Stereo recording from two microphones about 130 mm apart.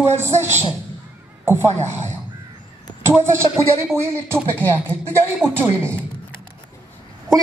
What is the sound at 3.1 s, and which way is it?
Speech, 20° right (ahead or behind).